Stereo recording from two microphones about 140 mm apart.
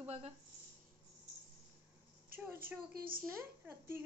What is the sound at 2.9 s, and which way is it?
Speech, 90° right.